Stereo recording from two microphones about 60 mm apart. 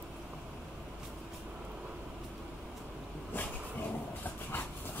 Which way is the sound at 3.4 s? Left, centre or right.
Left.